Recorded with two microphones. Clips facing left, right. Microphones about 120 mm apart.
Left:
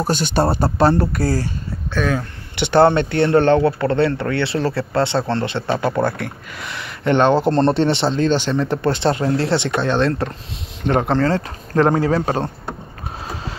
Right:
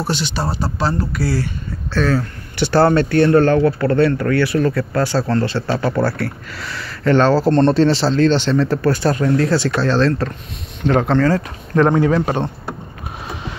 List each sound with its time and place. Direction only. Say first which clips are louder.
0.0 s speech: left 4 dB; 50° left (ahead or behind)
2.0 s speech: right 3 dB; 15° left (ahead or behind); by 12.4 s 35° left (ahead or behind)